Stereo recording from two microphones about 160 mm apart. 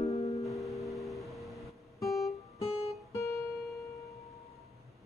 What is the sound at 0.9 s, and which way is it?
Music, centre (ahead or behind).